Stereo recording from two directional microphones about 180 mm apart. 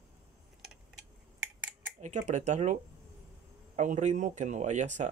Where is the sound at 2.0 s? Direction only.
40° right (ahead or behind).